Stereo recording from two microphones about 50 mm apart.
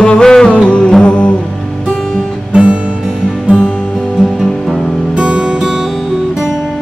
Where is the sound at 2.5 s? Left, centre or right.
Right.